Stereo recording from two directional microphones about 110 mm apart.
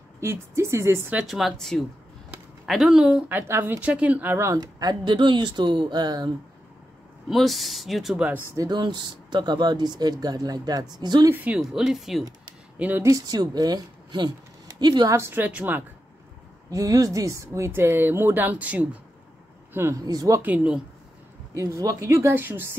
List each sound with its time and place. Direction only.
0.2 s speech: 25° right (ahead or behind)
1.1 s speech: centre (ahead or behind); by 6.3 s 40° right (ahead or behind)
7.2 s speech: centre (ahead or behind)
8.5 s speech: 40° right (ahead or behind)
11.2 s a woman's voice: 15° right (ahead or behind)
11.6 s speech: centre (ahead or behind)
12.7 s speech: 15° right (ahead or behind)
13.0 s a woman's voice: 35° right (ahead or behind)
15.1 s a woman's voice: 20° right (ahead or behind)
16.7 s speech: 35° right (ahead or behind)
20.0 s speech: 35° right (ahead or behind)
20.4 s a woman's voice: 10° right (ahead or behind)
21.5 s speech: 30° right (ahead or behind)